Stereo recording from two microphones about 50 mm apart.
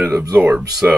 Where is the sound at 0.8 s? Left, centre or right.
Right.